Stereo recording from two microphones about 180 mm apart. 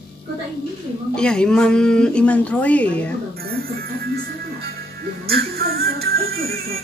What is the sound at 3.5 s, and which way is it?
Music, 55° right (ahead or behind).